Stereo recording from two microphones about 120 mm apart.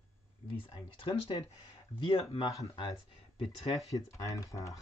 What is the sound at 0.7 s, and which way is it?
Speech, 45° left (ahead or behind).